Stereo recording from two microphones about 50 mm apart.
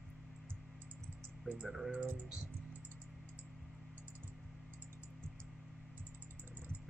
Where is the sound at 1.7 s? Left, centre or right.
Centre.